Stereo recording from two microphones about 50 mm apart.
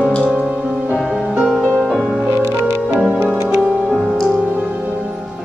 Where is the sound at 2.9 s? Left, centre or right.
Centre.